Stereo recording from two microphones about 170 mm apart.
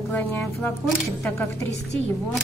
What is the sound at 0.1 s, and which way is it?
A woman's voice, 10° left (ahead or behind).